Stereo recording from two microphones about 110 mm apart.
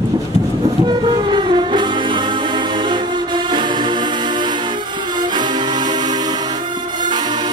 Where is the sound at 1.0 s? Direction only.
50° right (ahead or behind).